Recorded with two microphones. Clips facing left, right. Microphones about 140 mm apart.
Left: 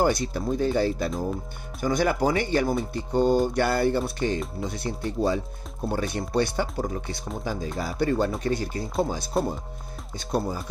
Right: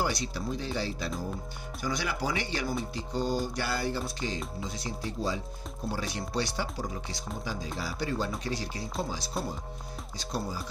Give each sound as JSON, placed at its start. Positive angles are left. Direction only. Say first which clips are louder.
{"t": 0.0, "sound": "speech", "louder": "left 8 dB", "side_deg": 50}